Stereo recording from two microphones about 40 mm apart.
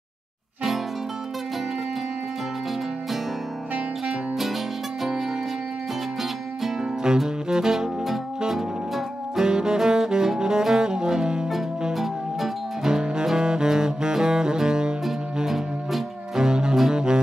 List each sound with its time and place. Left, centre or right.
6.6 s music: centre
11.9 s music: centre